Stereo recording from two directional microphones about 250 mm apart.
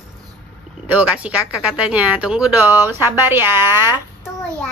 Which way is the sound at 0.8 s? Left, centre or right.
Centre.